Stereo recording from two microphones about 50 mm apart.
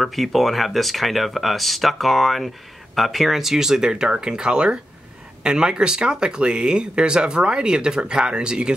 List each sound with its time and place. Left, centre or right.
0.0 s speech: centre